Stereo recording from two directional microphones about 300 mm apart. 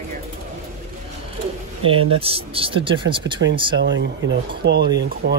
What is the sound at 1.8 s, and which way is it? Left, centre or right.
Speech, centre.